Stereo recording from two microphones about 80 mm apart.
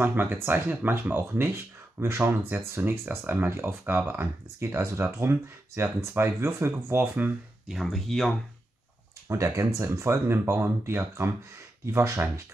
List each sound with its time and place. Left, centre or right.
0.0 s speech: right
7.6 s speech: centre
9.3 s speech: right